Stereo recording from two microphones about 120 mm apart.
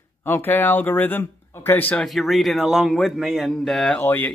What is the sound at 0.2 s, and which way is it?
Speech, 20° left (ahead or behind).